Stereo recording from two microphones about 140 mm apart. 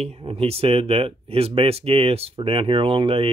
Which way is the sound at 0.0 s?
45° right (ahead or behind).